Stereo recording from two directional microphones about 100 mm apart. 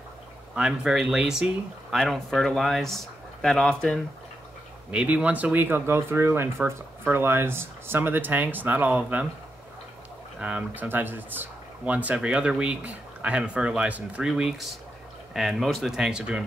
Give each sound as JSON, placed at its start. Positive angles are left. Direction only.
{"t": 0.6, "sound": "speech", "side_deg": -5}
{"t": 4.9, "sound": "speech", "side_deg": -15}
{"t": 10.4, "sound": "speech", "side_deg": -15}